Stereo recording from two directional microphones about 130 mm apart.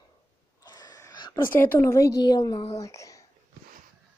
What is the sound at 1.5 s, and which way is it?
Speech, 15° left (ahead or behind).